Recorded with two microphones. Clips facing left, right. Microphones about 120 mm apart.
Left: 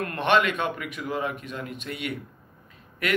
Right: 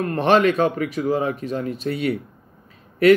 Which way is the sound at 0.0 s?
35° right (ahead or behind).